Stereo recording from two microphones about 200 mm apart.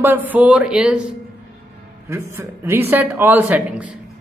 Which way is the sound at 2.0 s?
15° right (ahead or behind).